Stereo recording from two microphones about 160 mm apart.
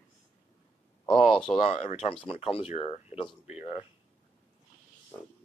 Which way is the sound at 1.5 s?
40° left (ahead or behind).